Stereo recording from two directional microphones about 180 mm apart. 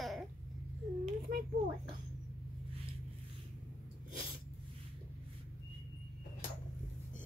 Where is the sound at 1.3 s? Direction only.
50° right (ahead or behind).